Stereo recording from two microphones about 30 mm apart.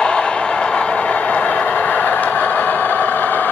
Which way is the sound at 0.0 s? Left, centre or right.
Left.